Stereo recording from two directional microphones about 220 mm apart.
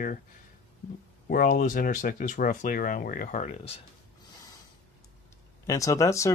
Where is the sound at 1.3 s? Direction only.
40° left (ahead or behind).